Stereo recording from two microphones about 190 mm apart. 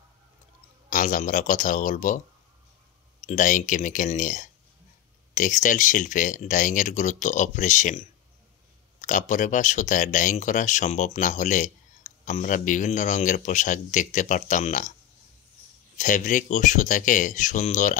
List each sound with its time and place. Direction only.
0.8 s speech: 45° left (ahead or behind)
3.2 s speech: 40° left (ahead or behind)
9.0 s speech: 40° left (ahead or behind)
16.0 s speech: 40° left (ahead or behind)